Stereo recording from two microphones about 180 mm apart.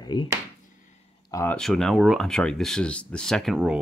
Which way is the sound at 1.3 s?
15° left (ahead or behind).